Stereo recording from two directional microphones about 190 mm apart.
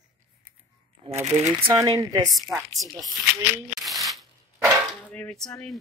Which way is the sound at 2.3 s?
Centre (ahead or behind).